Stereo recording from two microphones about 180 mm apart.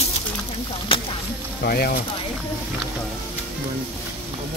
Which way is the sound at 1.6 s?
60° left (ahead or behind).